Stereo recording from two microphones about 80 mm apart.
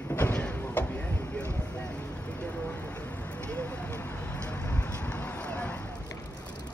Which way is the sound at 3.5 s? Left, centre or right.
Left.